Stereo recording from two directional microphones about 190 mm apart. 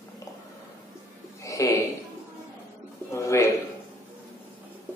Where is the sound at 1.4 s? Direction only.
15° left (ahead or behind).